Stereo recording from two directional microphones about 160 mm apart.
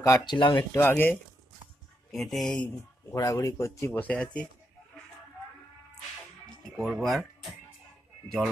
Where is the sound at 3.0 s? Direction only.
20° left (ahead or behind).